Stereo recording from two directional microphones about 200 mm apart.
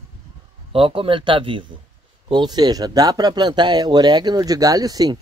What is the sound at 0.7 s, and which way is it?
Speech, 25° right (ahead or behind).